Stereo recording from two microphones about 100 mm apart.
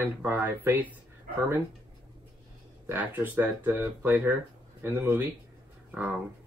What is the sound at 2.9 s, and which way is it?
Speech, 20° right (ahead or behind).